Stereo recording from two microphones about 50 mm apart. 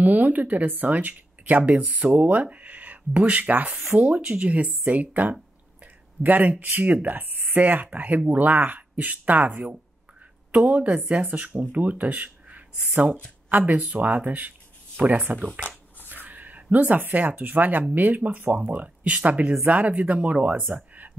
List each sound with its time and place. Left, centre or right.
0.0 s speech: right